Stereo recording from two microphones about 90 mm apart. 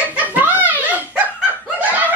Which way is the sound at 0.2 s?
15° right (ahead or behind).